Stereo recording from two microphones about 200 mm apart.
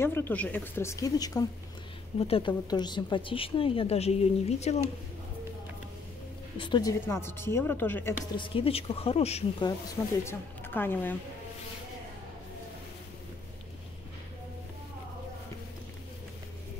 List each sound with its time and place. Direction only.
0.0 s a woman's voice: 10° left (ahead or behind)
2.1 s a woman's voice: 30° left (ahead or behind)
6.6 s a woman's voice: 20° left (ahead or behind)
8.4 s a woman's voice: 25° left (ahead or behind)
10.2 s speech: 10° left (ahead or behind)